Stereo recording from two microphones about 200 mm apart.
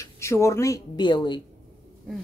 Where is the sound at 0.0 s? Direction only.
15° left (ahead or behind).